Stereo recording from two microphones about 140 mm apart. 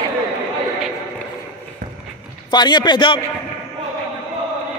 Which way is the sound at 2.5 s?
30° left (ahead or behind).